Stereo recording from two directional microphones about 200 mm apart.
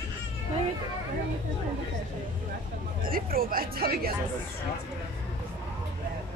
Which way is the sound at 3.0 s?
45° right (ahead or behind).